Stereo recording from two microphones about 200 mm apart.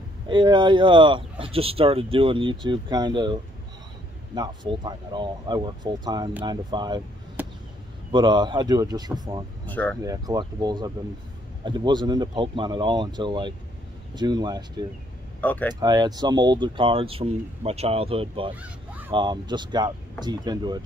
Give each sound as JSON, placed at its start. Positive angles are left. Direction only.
{"t": 0.3, "sound": "speech", "side_deg": -25}
{"t": 4.4, "sound": "speech", "side_deg": -20}
{"t": 7.4, "sound": "chop", "side_deg": -10}
{"t": 8.1, "sound": "speech", "side_deg": -20}
{"t": 9.7, "sound": "speech", "side_deg": 10}
{"t": 10.0, "sound": "speech", "side_deg": -20}
{"t": 15.4, "sound": "speech", "side_deg": 10}
{"t": 15.7, "sound": "speech", "side_deg": -20}
{"t": 18.6, "sound": "honk", "side_deg": -10}
{"t": 19.1, "sound": "speech", "side_deg": -20}